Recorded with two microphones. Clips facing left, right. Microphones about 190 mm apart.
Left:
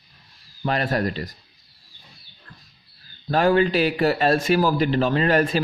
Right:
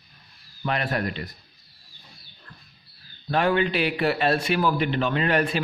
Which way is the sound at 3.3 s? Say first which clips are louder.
Left 4 dB; 40° left (ahead or behind).